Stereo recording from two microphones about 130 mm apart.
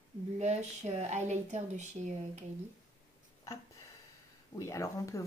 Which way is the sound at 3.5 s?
25° left (ahead or behind).